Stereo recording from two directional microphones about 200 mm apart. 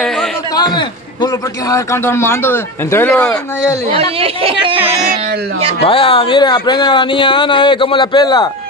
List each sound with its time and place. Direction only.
0.6 s a man's voice: 20° left (ahead or behind)
4.2 s speech: 30° right (ahead or behind)
5.9 s speech: 25° left (ahead or behind)